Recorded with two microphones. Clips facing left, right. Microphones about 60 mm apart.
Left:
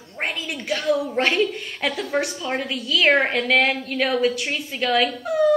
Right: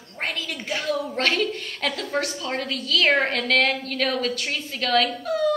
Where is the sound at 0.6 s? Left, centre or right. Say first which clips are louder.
Left 3 dB; centre.